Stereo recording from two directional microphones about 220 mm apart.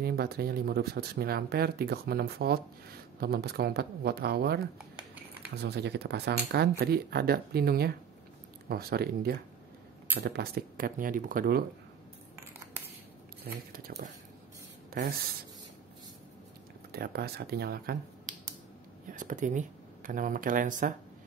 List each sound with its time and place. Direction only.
0.0 s speech: 45° right (ahead or behind)
4.7 s a sound: 5° right (ahead or behind)
5.6 s speech: 50° right (ahead or behind)
13.7 s speech: 40° right (ahead or behind)
16.9 s speech: 45° right (ahead or behind)
19.1 s speech: 35° right (ahead or behind)